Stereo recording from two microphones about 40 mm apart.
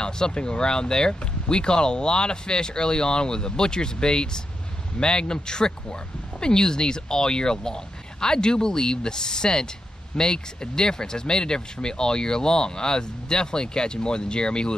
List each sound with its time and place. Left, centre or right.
0.0 s speech: left